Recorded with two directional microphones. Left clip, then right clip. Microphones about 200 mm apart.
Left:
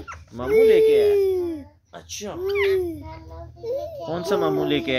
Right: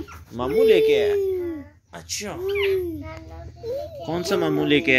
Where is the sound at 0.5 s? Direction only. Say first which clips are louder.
Left 2 dB; 5° right (ahead or behind).